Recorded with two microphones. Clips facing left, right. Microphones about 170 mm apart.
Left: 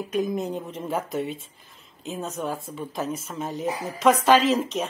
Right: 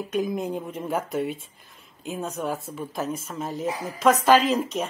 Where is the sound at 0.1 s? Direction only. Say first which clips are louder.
Even; 5° right (ahead or behind).